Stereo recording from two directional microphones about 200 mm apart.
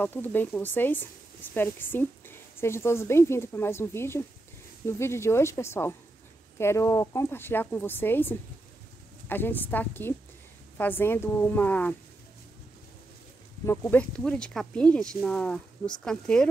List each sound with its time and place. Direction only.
0.0 s speech: 10° left (ahead or behind)
13.7 s speech: 10° left (ahead or behind)